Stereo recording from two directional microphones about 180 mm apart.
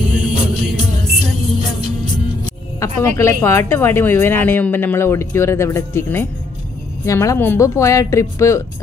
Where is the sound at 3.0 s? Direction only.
15° left (ahead or behind).